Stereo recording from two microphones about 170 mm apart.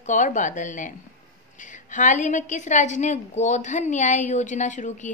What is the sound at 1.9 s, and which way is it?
A woman's voice, 45° left (ahead or behind).